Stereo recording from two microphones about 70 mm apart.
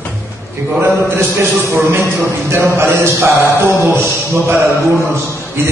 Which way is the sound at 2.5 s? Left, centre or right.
Right.